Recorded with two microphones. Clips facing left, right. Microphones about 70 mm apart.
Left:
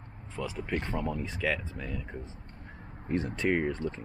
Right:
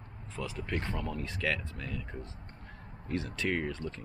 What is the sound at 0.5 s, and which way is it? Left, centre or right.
Speech, centre.